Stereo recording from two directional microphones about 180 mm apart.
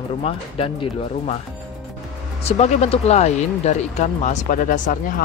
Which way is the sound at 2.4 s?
35° left (ahead or behind).